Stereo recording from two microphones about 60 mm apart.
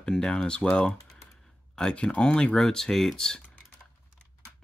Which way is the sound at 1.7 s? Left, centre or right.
Centre.